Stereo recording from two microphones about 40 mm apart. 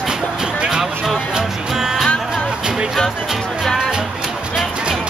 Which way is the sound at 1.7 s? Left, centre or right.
Centre.